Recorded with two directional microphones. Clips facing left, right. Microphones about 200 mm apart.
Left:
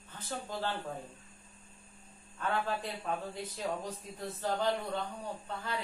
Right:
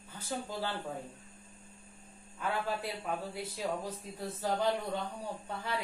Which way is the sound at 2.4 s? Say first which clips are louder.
Left 1 dB; 10° right (ahead or behind).